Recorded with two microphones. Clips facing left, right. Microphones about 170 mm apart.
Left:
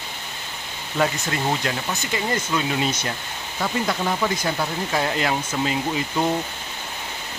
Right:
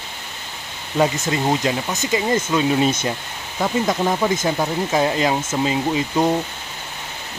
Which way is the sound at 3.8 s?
20° right (ahead or behind).